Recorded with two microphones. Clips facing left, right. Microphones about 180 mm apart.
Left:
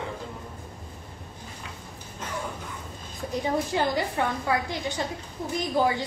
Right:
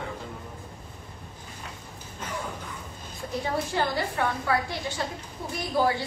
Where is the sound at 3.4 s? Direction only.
15° left (ahead or behind).